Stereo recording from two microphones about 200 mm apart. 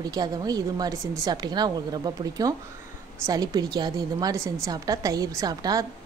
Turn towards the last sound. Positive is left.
turn(degrees=-20)  # may be behind; listen again after turning